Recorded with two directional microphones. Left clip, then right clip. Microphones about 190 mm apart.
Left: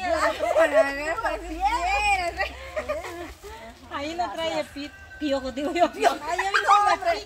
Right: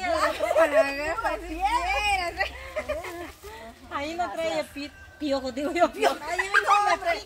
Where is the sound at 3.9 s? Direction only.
15° right (ahead or behind).